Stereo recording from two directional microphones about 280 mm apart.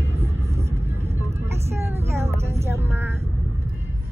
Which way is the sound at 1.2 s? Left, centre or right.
Centre.